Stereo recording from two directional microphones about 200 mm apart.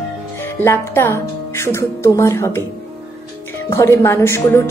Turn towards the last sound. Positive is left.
turn(degrees=10)  # may be behind; listen again after turning